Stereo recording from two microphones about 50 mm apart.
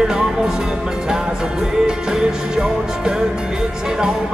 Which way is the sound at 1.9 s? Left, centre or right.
Centre.